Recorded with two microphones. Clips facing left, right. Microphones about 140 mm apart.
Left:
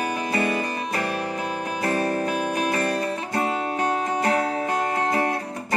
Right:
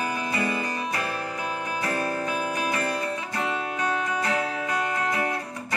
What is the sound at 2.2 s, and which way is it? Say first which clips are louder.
Music: left 3 dB; 60° left (ahead or behind).